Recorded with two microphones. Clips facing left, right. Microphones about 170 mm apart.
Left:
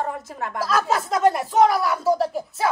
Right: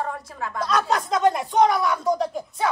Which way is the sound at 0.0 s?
20° left (ahead or behind).